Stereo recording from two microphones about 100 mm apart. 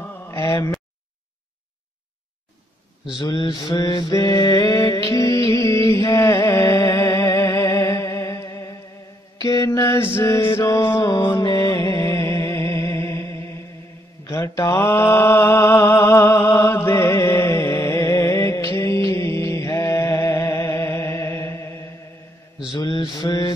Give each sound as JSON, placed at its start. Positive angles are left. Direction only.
{"t": 0.0, "sound": "a sound", "side_deg": 20}
{"t": 3.2, "sound": "a sound", "side_deg": 45}
{"t": 3.7, "sound": "mantra", "side_deg": 40}
{"t": 11.4, "sound": "music", "side_deg": 35}
{"t": 14.3, "sound": "mantra", "side_deg": 35}
{"t": 22.7, "sound": "mantra", "side_deg": 50}